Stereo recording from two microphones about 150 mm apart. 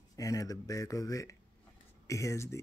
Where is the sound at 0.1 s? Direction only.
25° left (ahead or behind).